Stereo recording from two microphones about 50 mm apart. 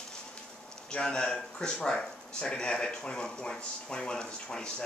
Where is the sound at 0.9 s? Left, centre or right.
Centre.